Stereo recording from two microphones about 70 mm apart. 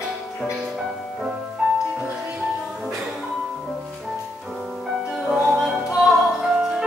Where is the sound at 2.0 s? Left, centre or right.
Centre.